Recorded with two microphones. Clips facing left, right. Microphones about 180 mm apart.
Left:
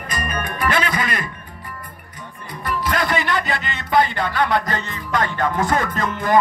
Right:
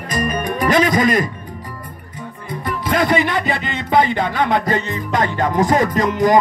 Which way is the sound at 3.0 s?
20° right (ahead or behind).